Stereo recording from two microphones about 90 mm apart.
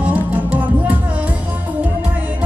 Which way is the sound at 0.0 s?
20° right (ahead or behind).